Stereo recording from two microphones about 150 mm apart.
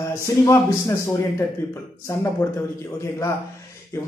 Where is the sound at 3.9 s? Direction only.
20° left (ahead or behind).